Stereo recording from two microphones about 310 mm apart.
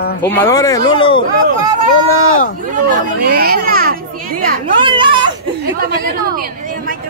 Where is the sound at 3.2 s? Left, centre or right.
Right.